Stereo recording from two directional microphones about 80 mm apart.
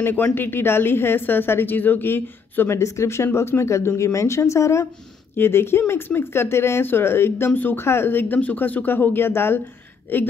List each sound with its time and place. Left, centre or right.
0.0 s speech: left